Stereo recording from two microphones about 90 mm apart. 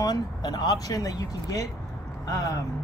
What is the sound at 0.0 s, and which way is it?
Speech, 50° left (ahead or behind).